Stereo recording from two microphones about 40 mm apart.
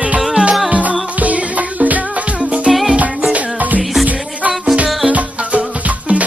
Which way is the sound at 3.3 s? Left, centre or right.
Right.